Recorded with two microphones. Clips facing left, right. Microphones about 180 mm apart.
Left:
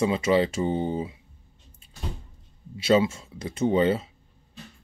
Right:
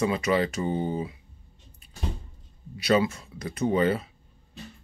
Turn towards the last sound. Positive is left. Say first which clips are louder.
# left 2 dB
turn(degrees=25)  # may be behind; listen again after turning